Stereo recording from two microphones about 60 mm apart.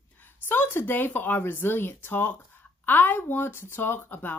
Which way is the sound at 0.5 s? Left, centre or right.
Left.